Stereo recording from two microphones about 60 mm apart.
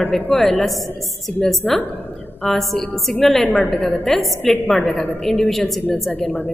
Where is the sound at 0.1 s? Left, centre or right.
Centre.